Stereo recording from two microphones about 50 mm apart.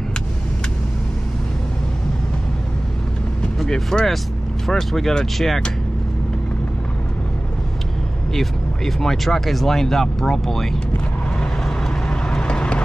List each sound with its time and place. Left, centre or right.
3.6 s speech: centre
8.3 s speech: centre
11.3 s vehicle: centre